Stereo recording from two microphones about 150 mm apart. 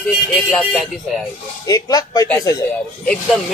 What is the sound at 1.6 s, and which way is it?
Speech, 25° left (ahead or behind).